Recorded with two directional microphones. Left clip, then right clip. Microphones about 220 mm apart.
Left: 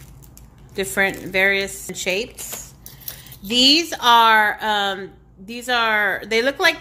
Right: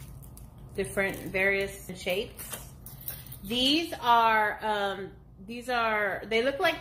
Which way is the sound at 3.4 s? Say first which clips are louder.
Left 11 dB; 50° left (ahead or behind).